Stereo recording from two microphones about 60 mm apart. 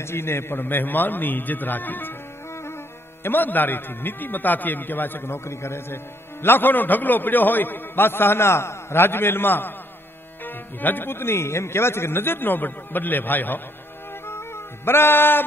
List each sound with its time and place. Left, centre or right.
0.0 s a man's voice: left
2.5 s music: left
3.3 s a man's voice: left
14.2 s music: left